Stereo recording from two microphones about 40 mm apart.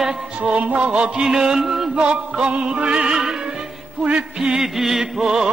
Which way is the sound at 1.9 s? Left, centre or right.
Right.